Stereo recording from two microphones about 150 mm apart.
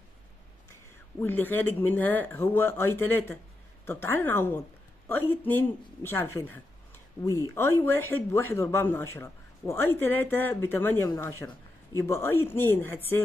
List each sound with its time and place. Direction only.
1.2 s speech: 15° left (ahead or behind)